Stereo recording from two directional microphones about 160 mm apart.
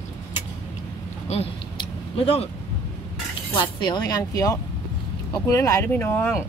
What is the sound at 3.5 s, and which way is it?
Speech, 30° left (ahead or behind).